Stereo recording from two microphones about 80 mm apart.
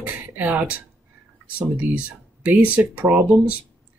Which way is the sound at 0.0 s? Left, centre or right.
Right.